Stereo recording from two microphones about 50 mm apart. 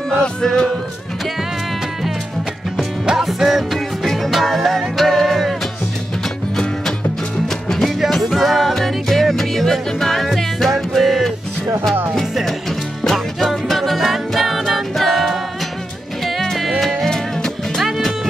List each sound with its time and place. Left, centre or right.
0.2 s music: centre
2.8 s music: centre
7.6 s music: centre
8.2 s music: centre
17.8 s music: centre